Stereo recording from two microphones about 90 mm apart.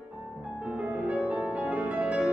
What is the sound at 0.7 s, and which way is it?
Music, 15° right (ahead or behind).